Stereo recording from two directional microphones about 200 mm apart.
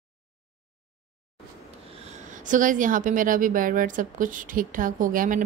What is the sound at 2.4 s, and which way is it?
A woman's voice, 40° right (ahead or behind).